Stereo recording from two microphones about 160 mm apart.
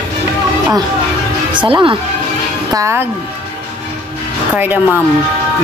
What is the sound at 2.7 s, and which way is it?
Speech, 20° right (ahead or behind).